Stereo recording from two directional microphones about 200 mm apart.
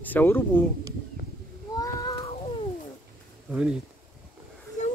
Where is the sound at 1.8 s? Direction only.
15° left (ahead or behind).